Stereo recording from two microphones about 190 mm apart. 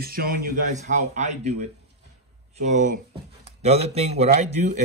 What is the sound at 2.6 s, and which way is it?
Speech, 40° right (ahead or behind).